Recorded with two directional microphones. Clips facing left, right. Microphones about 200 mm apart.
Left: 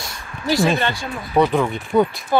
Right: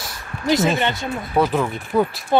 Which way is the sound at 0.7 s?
20° right (ahead or behind).